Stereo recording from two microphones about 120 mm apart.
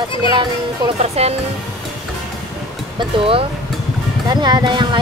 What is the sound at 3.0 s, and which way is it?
Speech, 50° right (ahead or behind).